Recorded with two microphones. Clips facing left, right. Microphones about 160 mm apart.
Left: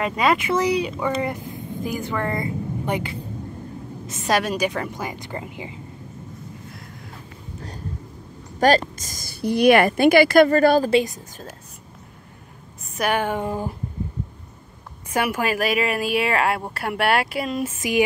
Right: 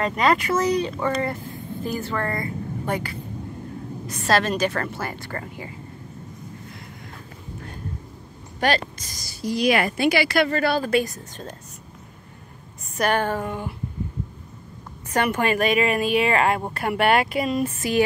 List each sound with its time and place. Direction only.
0.0 s a woman's voice: 10° left (ahead or behind)
8.5 s speech: 40° left (ahead or behind)
10.9 s a woman's voice: 25° left (ahead or behind)
12.9 s a woman's voice: 10° left (ahead or behind)
13.4 s a sound: 35° left (ahead or behind)
15.1 s a woman's voice: 5° left (ahead or behind)